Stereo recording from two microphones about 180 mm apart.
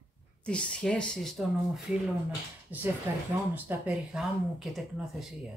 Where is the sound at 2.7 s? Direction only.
10° right (ahead or behind).